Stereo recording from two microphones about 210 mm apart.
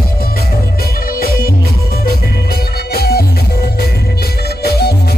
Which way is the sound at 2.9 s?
50° left (ahead or behind).